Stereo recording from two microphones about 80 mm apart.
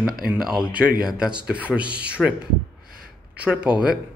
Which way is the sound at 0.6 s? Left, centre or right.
Centre.